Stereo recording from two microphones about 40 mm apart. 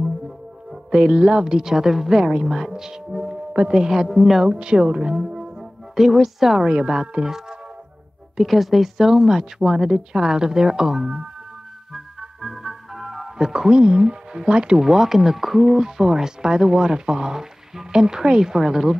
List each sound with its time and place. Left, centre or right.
0.7 s speech: centre
4.5 s speech: right; by 6.6 s centre
6.6 s speech: centre
8.4 s speech: centre
11.9 s music: centre
14.8 s speech: centre